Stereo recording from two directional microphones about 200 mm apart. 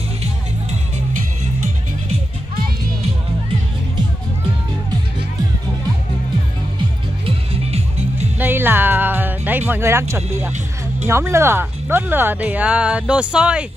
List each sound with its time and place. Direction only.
7.2 s music: 30° right (ahead or behind)
8.4 s music: 10° right (ahead or behind)
11.1 s speech: 15° right (ahead or behind)